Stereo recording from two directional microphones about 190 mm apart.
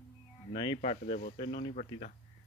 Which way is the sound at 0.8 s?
35° left (ahead or behind).